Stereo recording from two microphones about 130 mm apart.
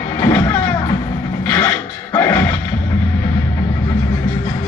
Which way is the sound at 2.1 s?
20° left (ahead or behind).